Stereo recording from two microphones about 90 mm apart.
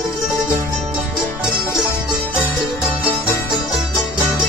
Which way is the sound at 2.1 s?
10° right (ahead or behind).